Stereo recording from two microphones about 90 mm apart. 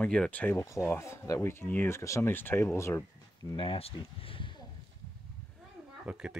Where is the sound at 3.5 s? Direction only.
75° left (ahead or behind).